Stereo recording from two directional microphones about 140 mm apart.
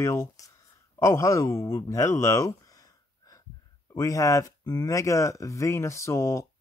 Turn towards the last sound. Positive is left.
turn(degrees=20)  # may be behind; listen again after turning